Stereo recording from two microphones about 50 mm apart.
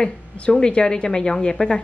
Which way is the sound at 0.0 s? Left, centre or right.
Centre.